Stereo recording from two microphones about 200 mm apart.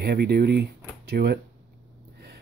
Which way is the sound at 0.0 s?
50° right (ahead or behind).